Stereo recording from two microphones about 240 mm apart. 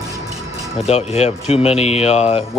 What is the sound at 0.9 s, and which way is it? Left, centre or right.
Speech, left.